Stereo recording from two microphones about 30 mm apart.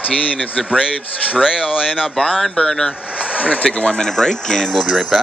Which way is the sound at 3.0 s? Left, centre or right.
Left.